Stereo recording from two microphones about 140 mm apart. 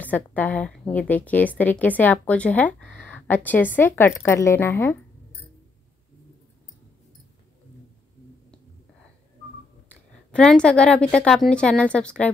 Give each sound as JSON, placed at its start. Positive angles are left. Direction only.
{"t": 0.0, "sound": "a woman's voice", "side_deg": 10}
{"t": 9.8, "sound": "a woman's voice", "side_deg": 5}